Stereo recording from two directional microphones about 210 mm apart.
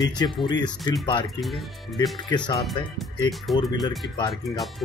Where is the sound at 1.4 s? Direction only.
Centre (ahead or behind).